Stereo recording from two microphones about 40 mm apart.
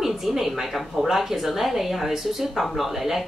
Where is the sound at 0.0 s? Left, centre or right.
Centre.